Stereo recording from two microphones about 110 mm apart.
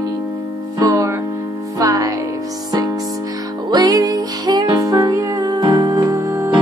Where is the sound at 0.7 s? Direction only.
30° right (ahead or behind).